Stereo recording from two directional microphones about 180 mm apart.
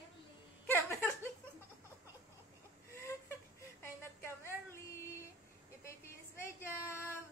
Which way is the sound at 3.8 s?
15° left (ahead or behind).